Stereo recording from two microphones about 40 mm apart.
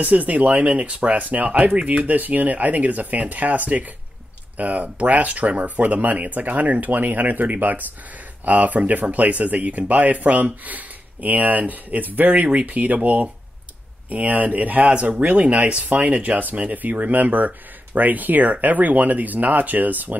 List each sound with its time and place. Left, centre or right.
0.0 s speech: right
14.9 s speech: right